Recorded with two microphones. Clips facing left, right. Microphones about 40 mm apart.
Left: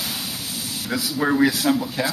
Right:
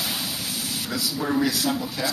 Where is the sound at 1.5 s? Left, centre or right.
Left.